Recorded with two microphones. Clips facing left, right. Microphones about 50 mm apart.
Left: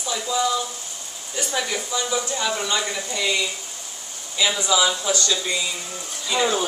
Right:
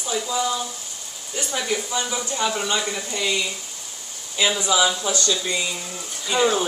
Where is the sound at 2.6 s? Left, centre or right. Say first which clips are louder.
Even; centre.